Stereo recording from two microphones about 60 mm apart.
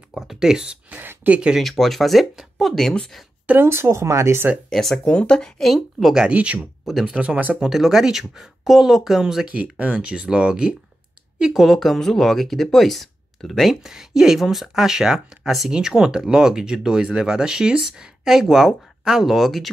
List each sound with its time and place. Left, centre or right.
0.1 s speech: centre
0.8 s speech: right
1.6 s speech: centre
3.6 s speech: right
4.6 s speech: centre
5.0 s speech: centre
5.6 s speech: centre
6.3 s speech: right
6.9 s speech: centre
7.2 s speech: right
7.6 s speech: centre
9.5 s speech: right
11.3 s speech: centre